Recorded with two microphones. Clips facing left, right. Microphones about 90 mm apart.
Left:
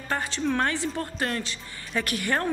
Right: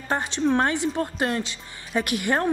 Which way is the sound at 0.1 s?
20° right (ahead or behind).